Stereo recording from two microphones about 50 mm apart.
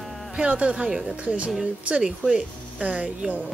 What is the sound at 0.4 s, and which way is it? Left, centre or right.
Speech, right.